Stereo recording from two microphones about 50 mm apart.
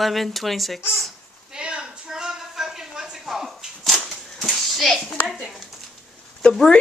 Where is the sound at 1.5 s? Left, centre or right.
Centre.